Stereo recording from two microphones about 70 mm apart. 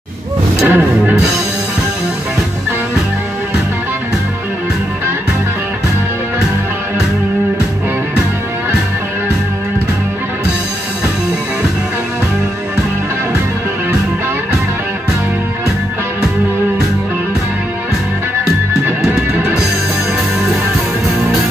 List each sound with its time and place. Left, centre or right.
0.7 s music: right